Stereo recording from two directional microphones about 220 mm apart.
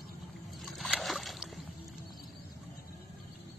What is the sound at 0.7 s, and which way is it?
Boat, centre (ahead or behind).